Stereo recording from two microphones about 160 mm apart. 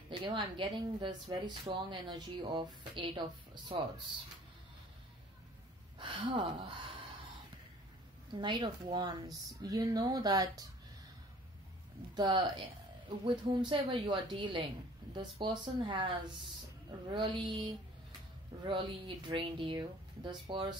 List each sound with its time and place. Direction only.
0.1 s speech: 30° right (ahead or behind)
5.9 s speech: 30° right (ahead or behind)
8.4 s speech: 30° right (ahead or behind)
12.2 s speech: 30° right (ahead or behind)
17.1 s speech: 30° right (ahead or behind)